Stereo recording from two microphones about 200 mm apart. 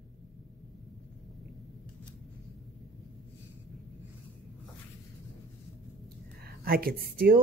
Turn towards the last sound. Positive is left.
turn(degrees=-50)  # may be behind; listen again after turning